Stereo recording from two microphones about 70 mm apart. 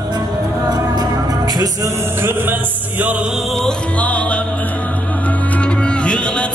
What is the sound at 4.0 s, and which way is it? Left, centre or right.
Music, centre.